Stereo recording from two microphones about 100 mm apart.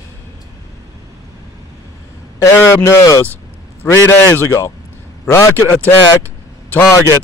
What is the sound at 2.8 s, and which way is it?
Speech, 35° left (ahead or behind).